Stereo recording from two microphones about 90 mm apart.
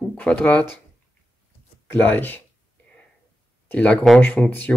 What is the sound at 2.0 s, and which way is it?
Speech, 20° left (ahead or behind).